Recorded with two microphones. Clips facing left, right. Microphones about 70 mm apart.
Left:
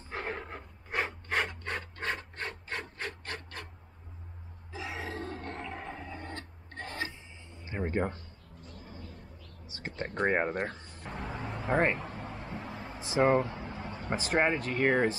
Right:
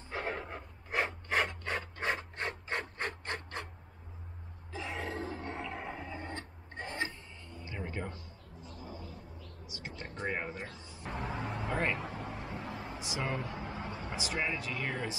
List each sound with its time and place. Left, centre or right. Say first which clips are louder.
0.1 s filing: even; centre
4.7 s a sound: even; centre
6.3 s printer: even; centre
7.1 s music: right 1 dB; centre
7.6 s a sound: left 9 dB; left
9.7 s speech: left 7 dB; left
11.1 s vehicle: right 1 dB; centre
11.6 s speech: left 7 dB; left
12.4 s vehicle: even; centre
13.0 s speech: left 12 dB; left
13.6 s vehicle: even; centre
14.0 s speech: left 9 dB; left